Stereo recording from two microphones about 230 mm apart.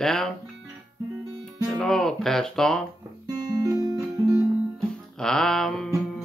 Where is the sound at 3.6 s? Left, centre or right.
Centre.